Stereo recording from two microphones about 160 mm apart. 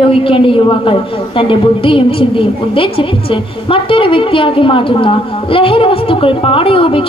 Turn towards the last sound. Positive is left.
turn(degrees=35)  # may be behind; listen again after turning